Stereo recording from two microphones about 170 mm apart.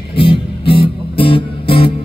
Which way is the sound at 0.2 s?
30° left (ahead or behind).